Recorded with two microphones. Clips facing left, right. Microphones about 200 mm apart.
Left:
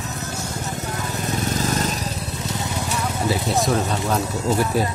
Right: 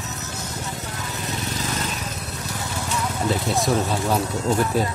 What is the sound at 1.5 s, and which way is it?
Vehicle, 40° left (ahead or behind).